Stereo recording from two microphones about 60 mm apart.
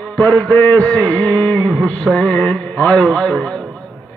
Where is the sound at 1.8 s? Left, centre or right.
Centre.